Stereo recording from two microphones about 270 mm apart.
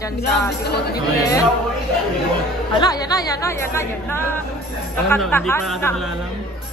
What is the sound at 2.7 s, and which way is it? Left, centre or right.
A woman's voice, centre.